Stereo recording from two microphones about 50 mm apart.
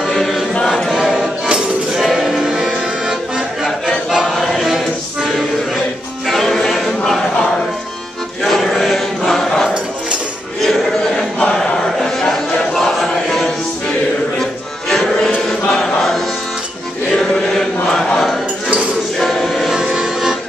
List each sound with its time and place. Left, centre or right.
0.7 s a sound: centre
0.9 s chink: centre
2.0 s music: centre
2.5 s accordion: centre
4.3 s chant: centre
6.2 s music: centre
8.4 s music: centre
9.2 s choir: centre
10.6 s a sound: centre
12.0 s music: centre
15.4 s chant: centre
17.2 s chant: centre
17.9 s a sound: centre
19.1 s music: centre